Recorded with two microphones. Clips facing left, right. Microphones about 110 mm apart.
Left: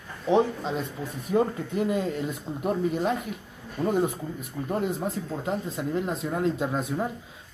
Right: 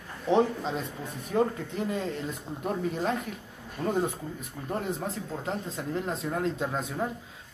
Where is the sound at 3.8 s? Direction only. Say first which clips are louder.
Left 3 dB; 30° left (ahead or behind).